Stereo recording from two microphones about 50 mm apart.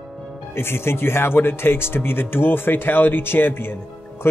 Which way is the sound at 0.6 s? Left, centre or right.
Left.